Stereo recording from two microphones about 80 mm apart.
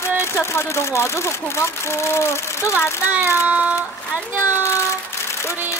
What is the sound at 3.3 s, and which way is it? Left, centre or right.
Child singing, centre.